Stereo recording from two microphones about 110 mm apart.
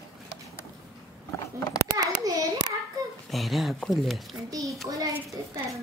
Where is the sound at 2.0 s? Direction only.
30° right (ahead or behind).